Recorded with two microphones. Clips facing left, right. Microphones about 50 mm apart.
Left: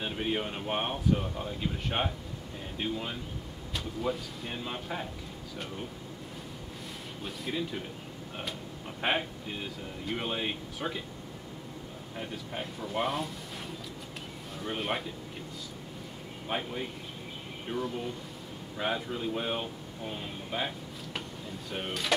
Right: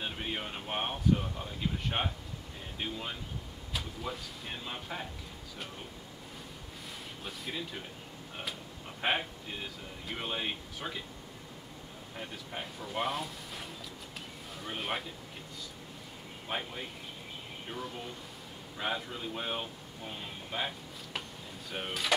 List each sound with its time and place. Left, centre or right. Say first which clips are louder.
0.0 s speech: left 5 dB; centre
7.2 s speech: left 5 dB; centre
9.0 s speech: left 2 dB; centre
12.2 s speech: left 3 dB; centre
14.6 s speech: left 3 dB; centre
16.4 s speech: left 4 dB; centre